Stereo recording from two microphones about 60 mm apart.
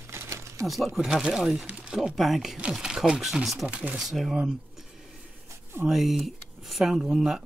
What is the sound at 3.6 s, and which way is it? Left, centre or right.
Speech, right.